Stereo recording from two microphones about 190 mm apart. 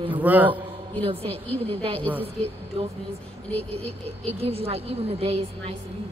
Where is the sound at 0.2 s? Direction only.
10° right (ahead or behind).